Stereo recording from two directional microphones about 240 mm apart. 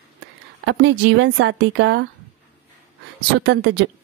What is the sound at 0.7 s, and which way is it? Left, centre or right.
Speech, right.